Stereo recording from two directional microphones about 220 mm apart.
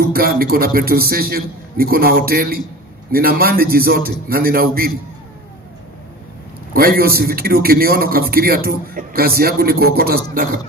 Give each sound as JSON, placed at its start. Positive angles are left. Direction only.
{"t": 0.1, "sound": "a man's voice", "side_deg": -40}
{"t": 6.7, "sound": "a man's voice", "side_deg": -40}